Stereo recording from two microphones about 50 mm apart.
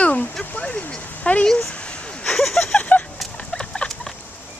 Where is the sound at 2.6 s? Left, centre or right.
Left.